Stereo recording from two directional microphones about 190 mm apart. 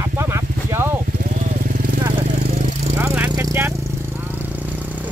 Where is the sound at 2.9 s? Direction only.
10° right (ahead or behind).